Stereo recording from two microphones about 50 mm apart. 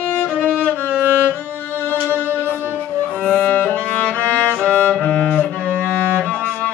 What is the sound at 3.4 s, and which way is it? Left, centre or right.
Music, left.